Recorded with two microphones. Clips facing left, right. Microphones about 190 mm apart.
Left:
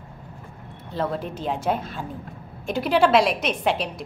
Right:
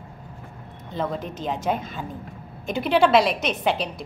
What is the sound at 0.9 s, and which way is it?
A woman's voice, 5° left (ahead or behind).